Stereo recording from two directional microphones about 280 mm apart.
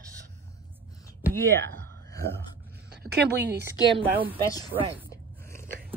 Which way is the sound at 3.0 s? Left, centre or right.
Right.